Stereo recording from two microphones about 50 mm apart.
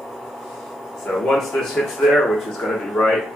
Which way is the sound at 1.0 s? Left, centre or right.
Centre.